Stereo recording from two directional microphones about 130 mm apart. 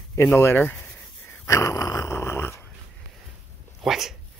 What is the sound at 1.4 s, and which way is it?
Dog, 25° left (ahead or behind).